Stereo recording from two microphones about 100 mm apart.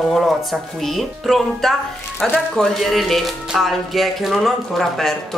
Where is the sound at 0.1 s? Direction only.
Centre (ahead or behind).